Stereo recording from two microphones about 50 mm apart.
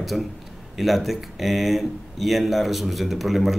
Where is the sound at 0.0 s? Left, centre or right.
Centre.